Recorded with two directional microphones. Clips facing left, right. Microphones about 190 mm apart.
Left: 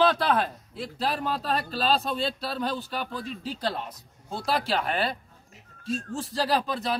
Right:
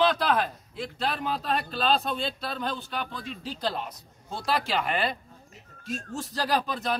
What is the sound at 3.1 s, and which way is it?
Speech, 35° left (ahead or behind).